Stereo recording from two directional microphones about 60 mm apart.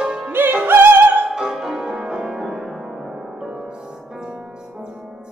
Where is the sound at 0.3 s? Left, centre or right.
Right.